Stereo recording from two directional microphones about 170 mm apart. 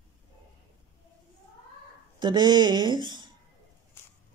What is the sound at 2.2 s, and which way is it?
Speech, 25° right (ahead or behind).